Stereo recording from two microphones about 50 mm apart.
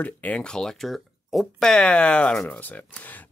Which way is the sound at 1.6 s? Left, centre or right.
Centre.